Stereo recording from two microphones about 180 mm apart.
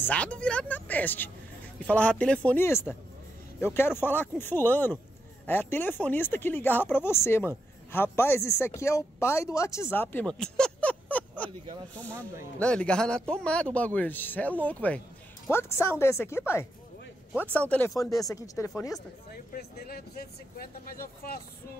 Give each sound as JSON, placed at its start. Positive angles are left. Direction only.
{"t": 0.0, "sound": "speech", "side_deg": 10}
{"t": 12.5, "sound": "a man's voice", "side_deg": 5}
{"t": 19.3, "sound": "speech", "side_deg": 55}